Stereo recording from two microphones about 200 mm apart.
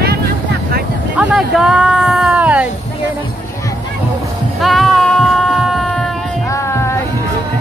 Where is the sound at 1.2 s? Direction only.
5° right (ahead or behind).